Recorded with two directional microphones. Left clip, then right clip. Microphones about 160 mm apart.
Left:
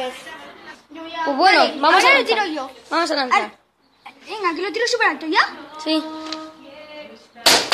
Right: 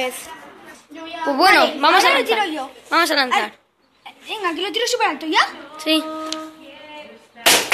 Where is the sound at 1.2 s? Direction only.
5° right (ahead or behind).